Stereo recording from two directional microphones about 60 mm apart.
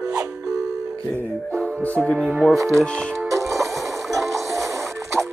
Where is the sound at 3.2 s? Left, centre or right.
Right.